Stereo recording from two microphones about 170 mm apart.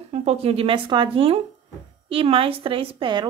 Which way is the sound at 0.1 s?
40° right (ahead or behind).